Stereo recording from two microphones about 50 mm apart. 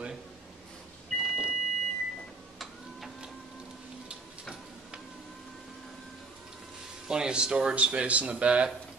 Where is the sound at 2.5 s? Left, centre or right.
Centre.